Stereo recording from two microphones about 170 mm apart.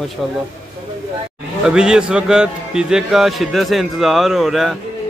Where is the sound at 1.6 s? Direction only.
5° right (ahead or behind).